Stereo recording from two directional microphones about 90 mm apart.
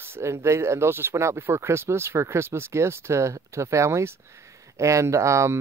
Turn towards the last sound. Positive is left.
turn(degrees=-30)  # may be behind; listen again after turning